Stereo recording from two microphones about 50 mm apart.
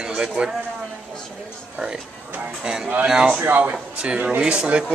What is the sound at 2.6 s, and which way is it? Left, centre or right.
Speech, centre.